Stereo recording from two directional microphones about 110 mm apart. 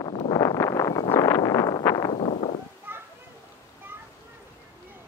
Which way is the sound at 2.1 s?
75° left (ahead or behind).